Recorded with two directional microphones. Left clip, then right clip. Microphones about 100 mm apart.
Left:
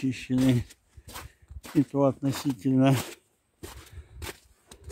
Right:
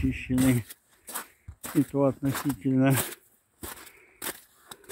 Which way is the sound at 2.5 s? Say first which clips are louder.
Left 2 dB; 40° left (ahead or behind).